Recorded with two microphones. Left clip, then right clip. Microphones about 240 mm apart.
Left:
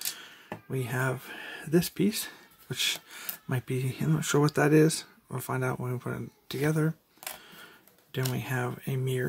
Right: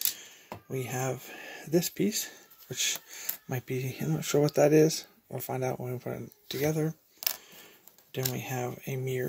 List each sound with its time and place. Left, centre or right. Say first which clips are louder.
0.2 s speech: left 2 dB; centre
8.1 s speech: left 1 dB; centre